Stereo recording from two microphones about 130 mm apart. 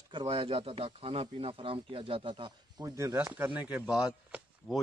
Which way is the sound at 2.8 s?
20° right (ahead or behind).